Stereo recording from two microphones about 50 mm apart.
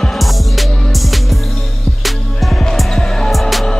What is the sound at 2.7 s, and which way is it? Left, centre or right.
Music, centre.